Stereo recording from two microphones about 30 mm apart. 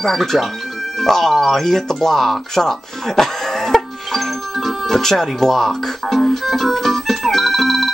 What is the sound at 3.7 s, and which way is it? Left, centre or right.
Music, centre.